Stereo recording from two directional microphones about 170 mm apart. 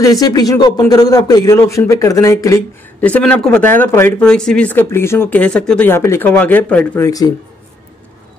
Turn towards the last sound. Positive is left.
turn(degrees=20)  # may be behind; listen again after turning